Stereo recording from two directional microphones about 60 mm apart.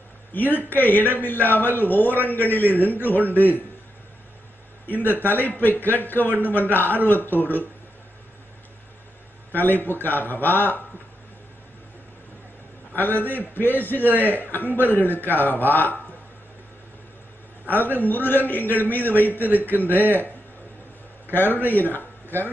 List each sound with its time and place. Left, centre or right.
0.3 s a man's voice: left
4.8 s a man's voice: left
9.6 s a man's voice: left
12.9 s a man's voice: left
17.6 s a man's voice: left
21.3 s a man's voice: left